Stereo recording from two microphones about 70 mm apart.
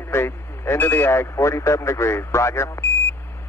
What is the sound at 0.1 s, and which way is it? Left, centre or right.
Speech, left.